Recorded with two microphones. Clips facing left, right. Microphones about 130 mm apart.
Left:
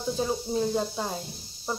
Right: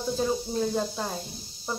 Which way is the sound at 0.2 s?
5° left (ahead or behind).